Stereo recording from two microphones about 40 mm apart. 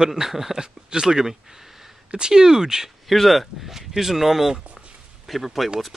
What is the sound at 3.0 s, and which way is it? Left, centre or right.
Speech, centre.